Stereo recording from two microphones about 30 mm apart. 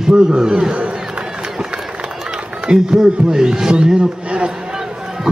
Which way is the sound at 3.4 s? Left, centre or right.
Right.